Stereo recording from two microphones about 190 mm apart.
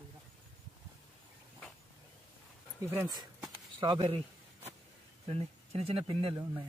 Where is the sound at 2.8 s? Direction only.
5° right (ahead or behind).